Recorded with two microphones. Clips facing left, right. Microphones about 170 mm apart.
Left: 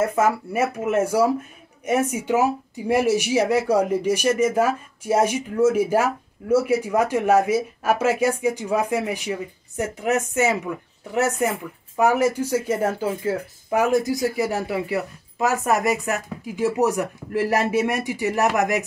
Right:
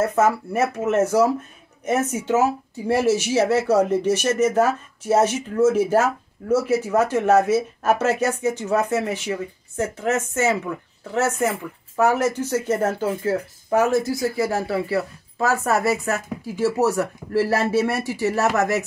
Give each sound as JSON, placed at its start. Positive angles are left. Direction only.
{"t": 0.0, "sound": "speech", "side_deg": 10}